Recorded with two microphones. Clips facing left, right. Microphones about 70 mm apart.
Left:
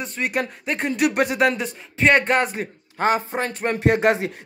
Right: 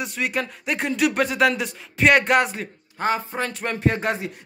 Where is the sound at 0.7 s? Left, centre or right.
Centre.